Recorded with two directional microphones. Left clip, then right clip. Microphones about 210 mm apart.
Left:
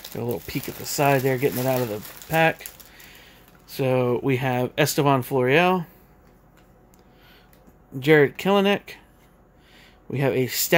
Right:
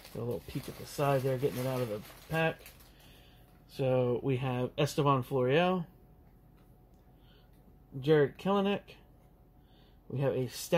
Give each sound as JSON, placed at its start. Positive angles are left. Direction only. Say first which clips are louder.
{"t": 0.1, "sound": "speech", "louder": "left 9 dB", "side_deg": 35}
{"t": 3.6, "sound": "speech", "louder": "left 8 dB", "side_deg": 25}
{"t": 8.0, "sound": "speech", "louder": "left 10 dB", "side_deg": 35}
{"t": 10.1, "sound": "speech", "louder": "left 10 dB", "side_deg": 35}